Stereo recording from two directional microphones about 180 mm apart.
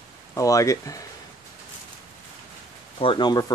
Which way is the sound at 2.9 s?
25° left (ahead or behind).